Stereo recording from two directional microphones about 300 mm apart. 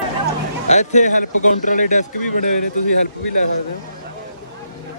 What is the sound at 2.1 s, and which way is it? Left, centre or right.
Speech, left.